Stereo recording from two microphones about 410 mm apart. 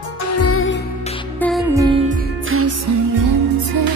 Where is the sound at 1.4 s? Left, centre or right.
Centre; by 3.9 s right.